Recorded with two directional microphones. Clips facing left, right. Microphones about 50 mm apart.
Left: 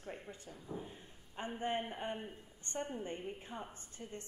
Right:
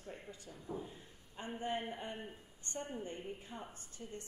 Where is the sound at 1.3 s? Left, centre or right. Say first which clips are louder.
Left 2 dB; left.